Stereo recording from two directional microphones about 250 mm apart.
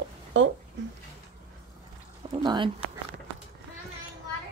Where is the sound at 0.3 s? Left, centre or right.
Right.